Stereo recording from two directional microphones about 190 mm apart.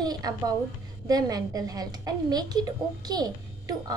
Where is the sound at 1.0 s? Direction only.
20° right (ahead or behind).